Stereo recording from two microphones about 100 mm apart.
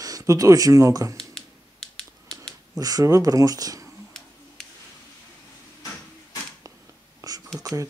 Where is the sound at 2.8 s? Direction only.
40° right (ahead or behind).